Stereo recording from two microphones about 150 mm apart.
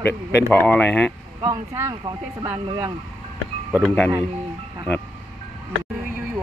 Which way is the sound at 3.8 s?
10° left (ahead or behind).